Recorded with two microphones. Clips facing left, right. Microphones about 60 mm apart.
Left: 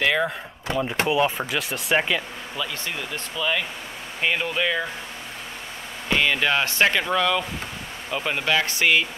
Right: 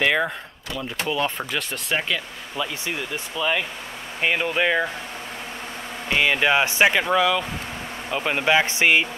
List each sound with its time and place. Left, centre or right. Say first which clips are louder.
0.0 s speech: right 1 dB; centre
0.7 s speech: left 6 dB; left
1.0 s speech: left 1 dB; centre
3.3 s speech: right 1 dB; centre
6.0 s speech: right 2 dB; centre